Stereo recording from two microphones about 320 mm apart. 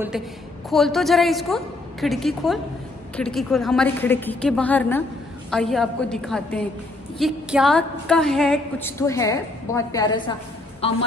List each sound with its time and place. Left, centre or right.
0.7 s a woman's voice: centre